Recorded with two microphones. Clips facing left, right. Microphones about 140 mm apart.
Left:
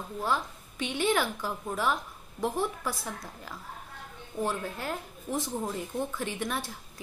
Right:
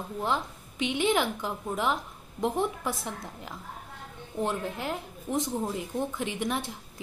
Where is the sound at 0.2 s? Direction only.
20° right (ahead or behind).